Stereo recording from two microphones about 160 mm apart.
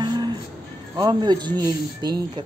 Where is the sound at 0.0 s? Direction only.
25° right (ahead or behind).